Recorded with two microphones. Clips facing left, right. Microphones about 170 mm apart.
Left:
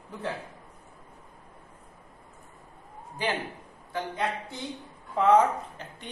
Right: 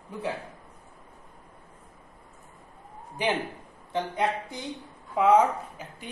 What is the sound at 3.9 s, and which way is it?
Speech, 15° right (ahead or behind).